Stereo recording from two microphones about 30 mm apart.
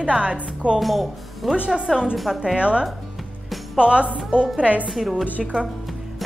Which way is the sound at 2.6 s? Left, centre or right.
Right.